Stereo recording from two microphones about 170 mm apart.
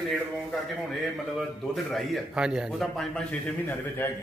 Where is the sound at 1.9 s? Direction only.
Centre (ahead or behind).